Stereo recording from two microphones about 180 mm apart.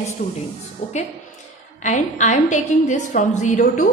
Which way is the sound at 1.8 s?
45° left (ahead or behind).